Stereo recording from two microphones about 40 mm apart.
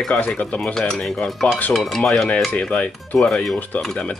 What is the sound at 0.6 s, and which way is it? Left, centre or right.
Speech, centre.